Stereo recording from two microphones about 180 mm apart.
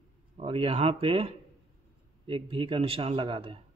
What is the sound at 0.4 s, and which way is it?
A man's voice, 30° right (ahead or behind).